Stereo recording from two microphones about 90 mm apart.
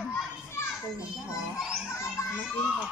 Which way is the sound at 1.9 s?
35° left (ahead or behind).